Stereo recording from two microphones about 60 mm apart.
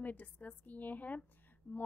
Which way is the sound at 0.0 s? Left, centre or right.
Left.